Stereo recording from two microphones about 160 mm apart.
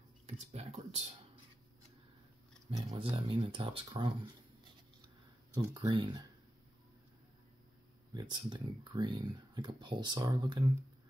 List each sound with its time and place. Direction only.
0.5 s speech: 40° right (ahead or behind)
3.0 s speech: 35° right (ahead or behind)
5.6 s speech: 25° right (ahead or behind)
8.1 s speech: 25° right (ahead or behind)